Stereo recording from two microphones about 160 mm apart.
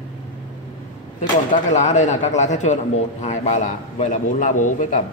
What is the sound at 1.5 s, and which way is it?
Speech, 45° left (ahead or behind).